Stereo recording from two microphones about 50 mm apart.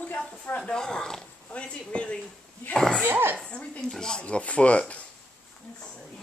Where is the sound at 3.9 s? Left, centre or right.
Centre.